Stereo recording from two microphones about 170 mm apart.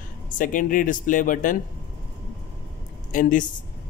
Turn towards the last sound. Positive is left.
turn(degrees=50)  # may be behind; listen again after turning